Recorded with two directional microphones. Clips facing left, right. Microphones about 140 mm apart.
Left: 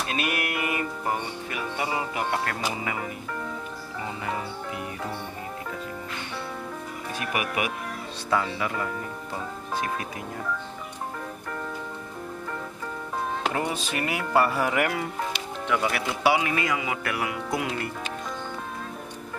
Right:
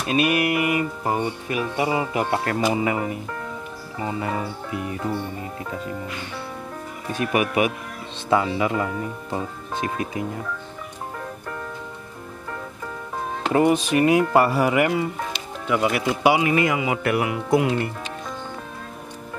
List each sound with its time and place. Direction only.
0.1 s a man's voice: 15° right (ahead or behind)
8.3 s a man's voice: 20° right (ahead or behind)
13.5 s a man's voice: 20° right (ahead or behind)